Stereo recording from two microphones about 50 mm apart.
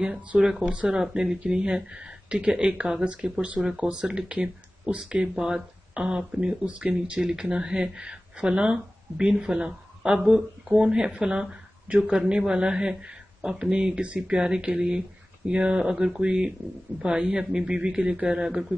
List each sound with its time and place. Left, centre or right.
0.4 s speech: centre
0.7 s speech: right
0.9 s speech: centre
7.2 s speech: centre